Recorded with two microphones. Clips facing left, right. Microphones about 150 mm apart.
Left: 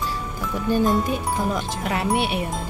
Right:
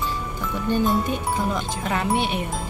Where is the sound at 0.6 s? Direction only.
10° left (ahead or behind).